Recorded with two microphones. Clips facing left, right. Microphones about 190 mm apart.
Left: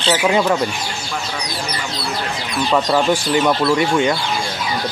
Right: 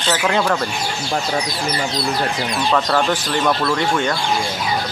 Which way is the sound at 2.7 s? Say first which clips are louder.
Left 3 dB; 10° left (ahead or behind).